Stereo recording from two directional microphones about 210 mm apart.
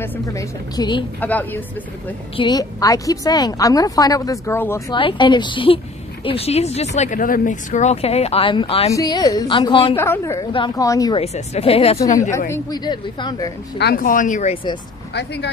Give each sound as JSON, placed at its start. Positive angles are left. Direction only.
{"t": 0.0, "sound": "a woman's voice", "side_deg": 15}
{"t": 1.2, "sound": "a woman's voice", "side_deg": 10}
{"t": 2.3, "sound": "a woman's voice", "side_deg": 20}
{"t": 9.9, "sound": "a woman's voice", "side_deg": 10}
{"t": 11.1, "sound": "a woman's voice", "side_deg": 30}
{"t": 13.7, "sound": "speech", "side_deg": 45}
{"t": 15.1, "sound": "speech", "side_deg": 55}